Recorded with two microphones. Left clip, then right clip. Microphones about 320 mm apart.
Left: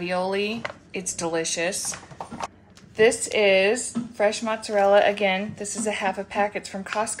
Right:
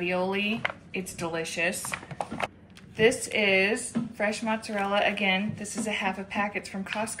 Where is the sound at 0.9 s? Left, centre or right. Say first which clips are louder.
Left 5 dB; left.